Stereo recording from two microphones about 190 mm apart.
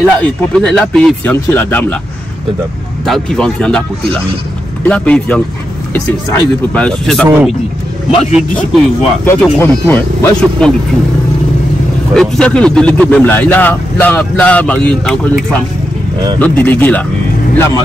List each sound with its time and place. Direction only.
0.0 s speech: 5° left (ahead or behind)
3.1 s speech: 5° left (ahead or behind)
6.7 s speech: 5° left (ahead or behind)
8.1 s a man's voice: 35° left (ahead or behind)
8.4 s speech: centre (ahead or behind)
9.2 s speech: 10° left (ahead or behind)
12.1 s speech: 5° left (ahead or behind)
16.3 s speech: 10° left (ahead or behind)